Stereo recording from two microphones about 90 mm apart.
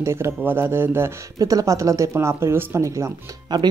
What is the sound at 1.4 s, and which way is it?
Speech, 40° right (ahead or behind).